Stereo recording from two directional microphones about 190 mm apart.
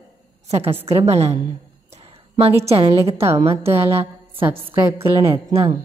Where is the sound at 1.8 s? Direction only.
30° right (ahead or behind).